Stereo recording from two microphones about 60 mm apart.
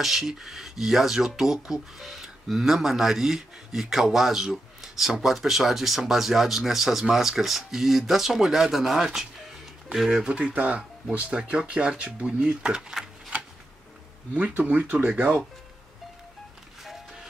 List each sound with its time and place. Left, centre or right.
0.0 s speech: centre
10.2 s speech: centre
14.6 s speech: right